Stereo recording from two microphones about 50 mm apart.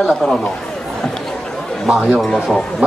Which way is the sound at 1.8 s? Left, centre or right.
Centre.